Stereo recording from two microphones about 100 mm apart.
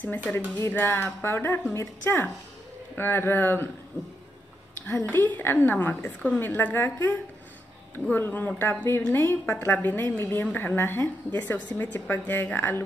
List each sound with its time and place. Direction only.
0.6 s a woman's voice: 20° left (ahead or behind)
5.1 s a woman's voice: 20° left (ahead or behind)